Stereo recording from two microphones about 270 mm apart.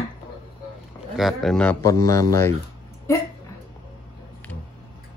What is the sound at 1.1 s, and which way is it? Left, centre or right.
Speech, centre.